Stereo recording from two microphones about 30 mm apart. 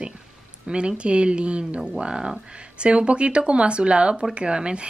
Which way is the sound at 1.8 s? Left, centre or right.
Right.